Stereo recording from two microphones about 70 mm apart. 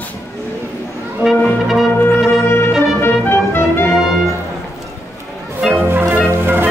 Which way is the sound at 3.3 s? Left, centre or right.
Left.